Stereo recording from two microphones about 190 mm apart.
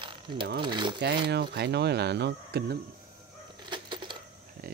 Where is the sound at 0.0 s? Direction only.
25° right (ahead or behind).